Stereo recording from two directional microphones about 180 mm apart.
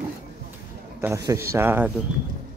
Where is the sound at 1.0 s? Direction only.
15° right (ahead or behind).